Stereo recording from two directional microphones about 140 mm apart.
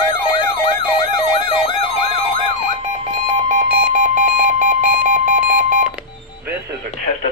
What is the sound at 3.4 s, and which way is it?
Alarm clock, 60° right (ahead or behind).